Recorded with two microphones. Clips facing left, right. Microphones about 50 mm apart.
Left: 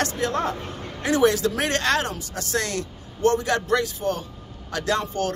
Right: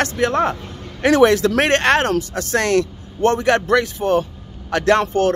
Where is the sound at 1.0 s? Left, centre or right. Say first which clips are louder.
Right 7 dB; right.